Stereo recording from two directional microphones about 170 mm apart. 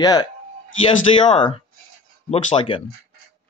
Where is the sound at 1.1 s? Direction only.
35° left (ahead or behind).